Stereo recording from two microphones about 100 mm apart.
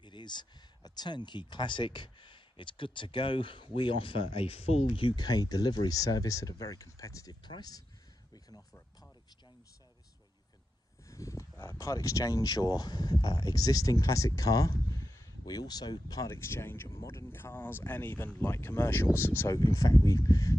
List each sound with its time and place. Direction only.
0.0 s speech: 50° left (ahead or behind)
11.1 s speech: 30° left (ahead or behind)
19.6 s speech: 35° left (ahead or behind)